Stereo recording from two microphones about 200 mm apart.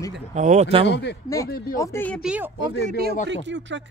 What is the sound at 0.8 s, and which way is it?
Speech, 60° left (ahead or behind).